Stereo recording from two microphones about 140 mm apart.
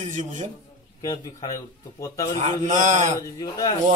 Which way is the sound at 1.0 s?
25° left (ahead or behind).